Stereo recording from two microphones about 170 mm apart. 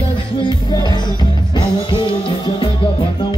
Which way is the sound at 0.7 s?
25° left (ahead or behind).